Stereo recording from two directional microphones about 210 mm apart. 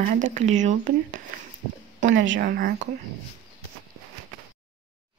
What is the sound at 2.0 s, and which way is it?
Speech, 65° right (ahead or behind).